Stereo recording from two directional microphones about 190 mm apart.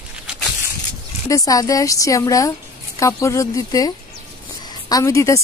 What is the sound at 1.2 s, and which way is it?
Speech, 15° left (ahead or behind).